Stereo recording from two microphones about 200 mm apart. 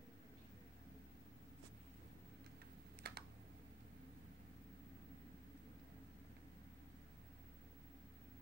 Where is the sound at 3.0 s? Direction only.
55° right (ahead or behind).